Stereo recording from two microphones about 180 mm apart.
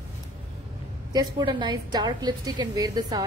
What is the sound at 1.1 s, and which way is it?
A woman's voice, 25° right (ahead or behind).